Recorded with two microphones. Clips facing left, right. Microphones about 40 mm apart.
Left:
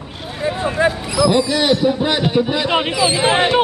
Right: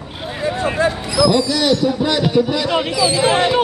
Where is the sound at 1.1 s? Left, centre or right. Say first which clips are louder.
Even; left.